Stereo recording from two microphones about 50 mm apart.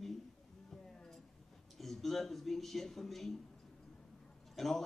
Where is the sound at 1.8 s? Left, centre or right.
Centre.